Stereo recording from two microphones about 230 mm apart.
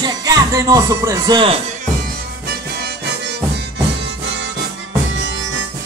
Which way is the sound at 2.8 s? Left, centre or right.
Right.